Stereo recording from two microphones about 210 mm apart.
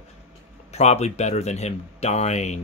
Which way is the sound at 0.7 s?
30° left (ahead or behind).